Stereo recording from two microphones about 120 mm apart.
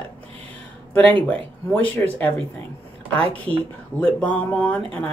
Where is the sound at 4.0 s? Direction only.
10° left (ahead or behind).